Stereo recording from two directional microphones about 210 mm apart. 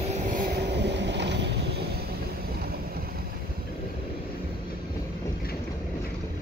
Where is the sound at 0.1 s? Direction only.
40° right (ahead or behind).